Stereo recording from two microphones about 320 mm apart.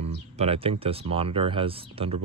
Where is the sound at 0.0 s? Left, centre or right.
Centre.